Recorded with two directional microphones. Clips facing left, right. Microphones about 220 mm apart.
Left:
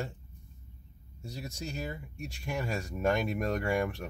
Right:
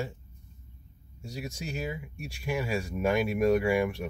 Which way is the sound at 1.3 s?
15° right (ahead or behind).